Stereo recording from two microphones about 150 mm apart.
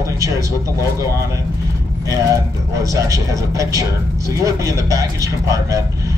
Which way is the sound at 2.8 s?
20° right (ahead or behind).